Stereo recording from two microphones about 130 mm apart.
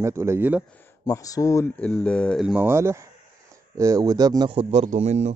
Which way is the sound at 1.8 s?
10° left (ahead or behind).